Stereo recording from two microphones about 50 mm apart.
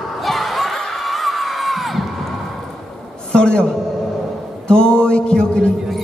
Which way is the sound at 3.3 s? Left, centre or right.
Centre.